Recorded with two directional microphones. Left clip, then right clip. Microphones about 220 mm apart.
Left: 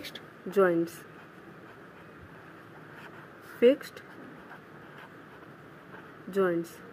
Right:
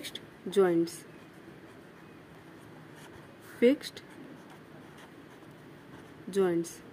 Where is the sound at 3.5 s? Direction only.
15° right (ahead or behind).